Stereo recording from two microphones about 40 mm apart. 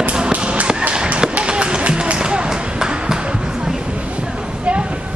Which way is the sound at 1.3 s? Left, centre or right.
Right.